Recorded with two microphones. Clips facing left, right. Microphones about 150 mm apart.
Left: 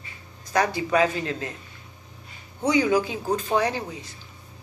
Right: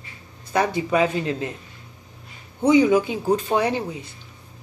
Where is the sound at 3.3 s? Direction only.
10° right (ahead or behind).